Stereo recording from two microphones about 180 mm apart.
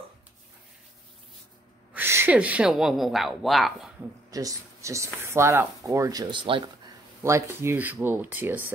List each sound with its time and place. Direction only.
2.0 s a woman's voice: 10° right (ahead or behind)
4.3 s speech: 20° right (ahead or behind)
7.2 s speech: 15° right (ahead or behind)